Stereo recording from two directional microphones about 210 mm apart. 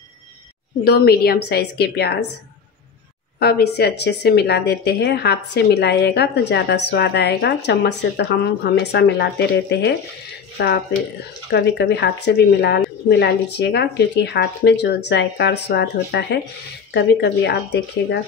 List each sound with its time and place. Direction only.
0.8 s speech: 50° left (ahead or behind)
3.3 s speech: 50° left (ahead or behind)